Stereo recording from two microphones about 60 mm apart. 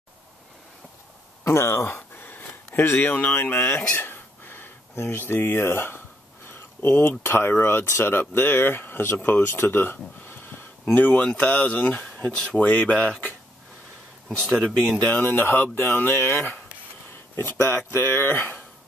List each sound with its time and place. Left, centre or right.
1.4 s speech: left
3.9 s a sound: left
6.8 s speech: left
12.9 s speech: centre
14.3 s speech: centre
15.0 s speech: left